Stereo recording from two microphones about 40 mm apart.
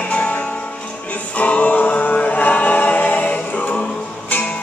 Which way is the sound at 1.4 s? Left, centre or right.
Left.